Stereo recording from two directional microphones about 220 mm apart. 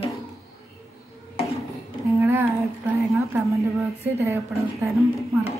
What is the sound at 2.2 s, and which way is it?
Speech, 10° right (ahead or behind).